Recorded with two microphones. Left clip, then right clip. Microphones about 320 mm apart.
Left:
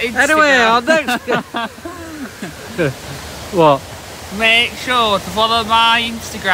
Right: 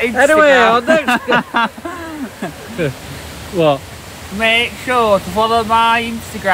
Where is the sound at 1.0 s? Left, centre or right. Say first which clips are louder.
Right 4 dB; right.